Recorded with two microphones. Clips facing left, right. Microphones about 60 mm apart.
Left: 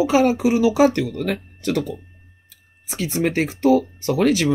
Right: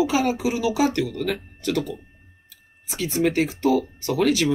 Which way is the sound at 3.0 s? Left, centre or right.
Left.